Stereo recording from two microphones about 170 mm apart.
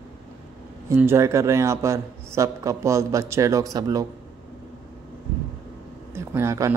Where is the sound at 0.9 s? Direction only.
15° right (ahead or behind).